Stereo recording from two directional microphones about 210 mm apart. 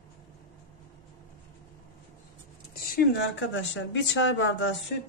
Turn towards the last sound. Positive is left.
turn(degrees=60)  # may be behind; listen again after turning